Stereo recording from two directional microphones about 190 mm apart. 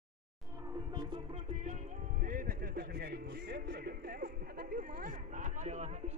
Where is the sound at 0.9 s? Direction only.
30° right (ahead or behind).